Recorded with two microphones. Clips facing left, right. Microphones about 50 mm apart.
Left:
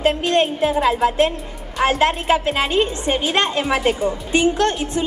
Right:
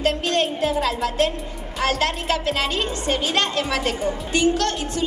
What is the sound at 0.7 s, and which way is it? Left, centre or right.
Speech, centre.